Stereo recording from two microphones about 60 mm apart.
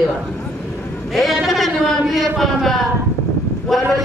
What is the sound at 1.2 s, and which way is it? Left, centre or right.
Speech, centre.